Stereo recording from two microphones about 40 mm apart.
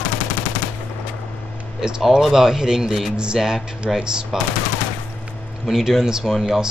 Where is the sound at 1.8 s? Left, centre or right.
Centre.